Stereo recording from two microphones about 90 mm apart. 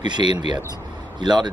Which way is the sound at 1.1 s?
55° right (ahead or behind).